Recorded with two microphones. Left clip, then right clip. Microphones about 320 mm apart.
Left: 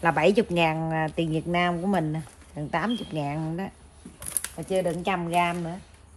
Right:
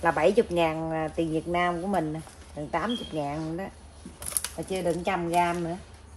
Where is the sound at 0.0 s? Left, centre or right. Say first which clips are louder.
Left 1 dB; left.